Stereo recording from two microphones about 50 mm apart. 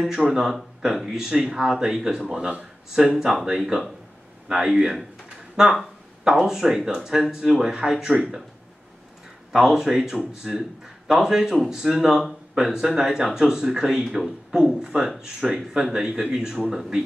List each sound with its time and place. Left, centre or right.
0.2 s speech: centre
2.2 s speech: centre
9.5 s speech: centre